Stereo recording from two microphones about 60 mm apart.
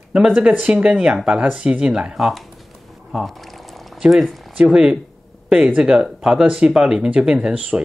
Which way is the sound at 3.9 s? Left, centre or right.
Centre.